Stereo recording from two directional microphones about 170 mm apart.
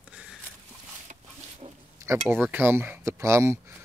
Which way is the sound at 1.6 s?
35° right (ahead or behind).